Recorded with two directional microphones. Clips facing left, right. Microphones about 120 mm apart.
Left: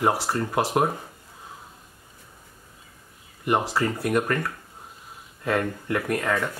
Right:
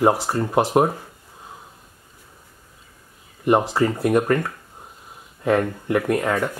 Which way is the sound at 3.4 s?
30° right (ahead or behind).